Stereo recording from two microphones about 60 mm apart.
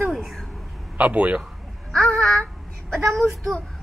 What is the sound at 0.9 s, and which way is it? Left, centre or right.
Speech, right.